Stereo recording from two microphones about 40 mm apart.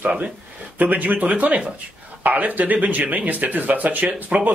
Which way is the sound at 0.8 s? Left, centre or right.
Right.